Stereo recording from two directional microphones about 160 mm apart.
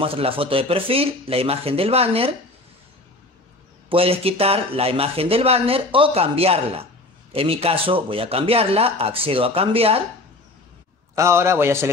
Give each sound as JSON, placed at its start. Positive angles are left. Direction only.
{"t": 0.0, "sound": "speech", "side_deg": -35}
{"t": 3.9, "sound": "speech", "side_deg": -35}
{"t": 11.1, "sound": "a man's voice", "side_deg": -15}